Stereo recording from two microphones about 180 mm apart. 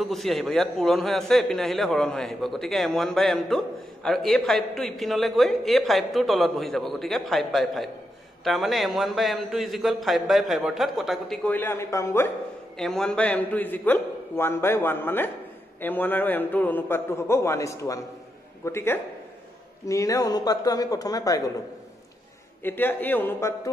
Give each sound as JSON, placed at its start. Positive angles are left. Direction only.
{"t": 0.0, "sound": "a man's voice", "side_deg": 0}
{"t": 12.7, "sound": "a man's voice", "side_deg": 5}
{"t": 22.6, "sound": "a man's voice", "side_deg": 10}